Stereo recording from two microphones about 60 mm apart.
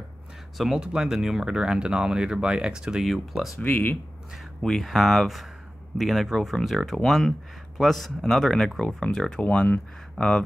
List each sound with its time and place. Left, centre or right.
0.6 s speech: centre
3.6 s speech: left
4.6 s speech: centre